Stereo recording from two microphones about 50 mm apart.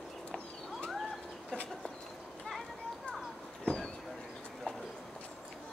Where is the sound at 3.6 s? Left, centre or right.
Centre.